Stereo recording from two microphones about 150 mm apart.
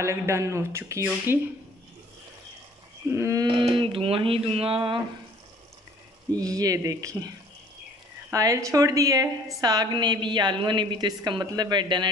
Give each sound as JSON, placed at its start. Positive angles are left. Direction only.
{"t": 0.0, "sound": "a woman's voice", "side_deg": -20}
{"t": 3.1, "sound": "a woman's voice", "side_deg": -20}
{"t": 3.4, "sound": "speech", "side_deg": -35}
{"t": 6.3, "sound": "a woman's voice", "side_deg": -25}
{"t": 8.3, "sound": "a woman's voice", "side_deg": -20}